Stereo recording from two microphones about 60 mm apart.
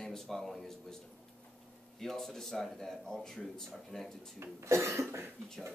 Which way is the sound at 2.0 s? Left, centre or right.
Centre.